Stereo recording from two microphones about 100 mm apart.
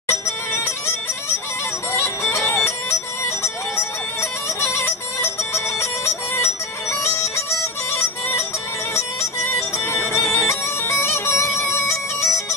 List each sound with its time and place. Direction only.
0.1 s bagpipes: 25° left (ahead or behind)
4.8 s music: 25° left (ahead or behind)
8.9 s bagpipes: 25° left (ahead or behind)